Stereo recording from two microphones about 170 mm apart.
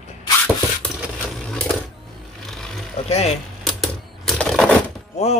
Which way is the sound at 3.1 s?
40° left (ahead or behind).